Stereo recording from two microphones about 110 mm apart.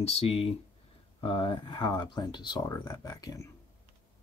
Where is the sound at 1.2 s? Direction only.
50° left (ahead or behind).